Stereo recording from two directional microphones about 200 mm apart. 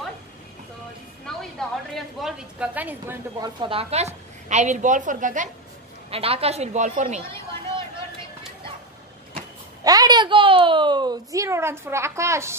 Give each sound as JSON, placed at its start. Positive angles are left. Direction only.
{"t": 1.2, "sound": "a sound", "side_deg": 5}
{"t": 2.1, "sound": "a woman's voice", "side_deg": 0}
{"t": 6.0, "sound": "a woman's voice", "side_deg": -30}
{"t": 9.8, "sound": "a woman's voice", "side_deg": -20}